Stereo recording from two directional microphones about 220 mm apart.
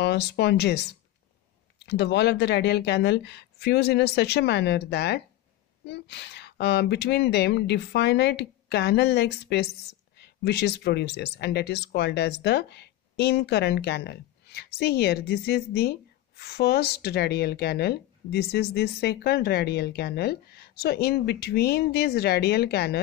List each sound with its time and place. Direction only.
0.0 s speech: 50° left (ahead or behind)